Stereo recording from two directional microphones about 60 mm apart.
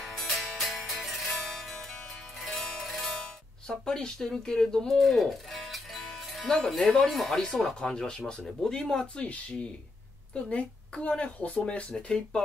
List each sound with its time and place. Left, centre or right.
0.0 s music: centre
6.9 s speech: centre; by 11.8 s left
11.9 s speech: centre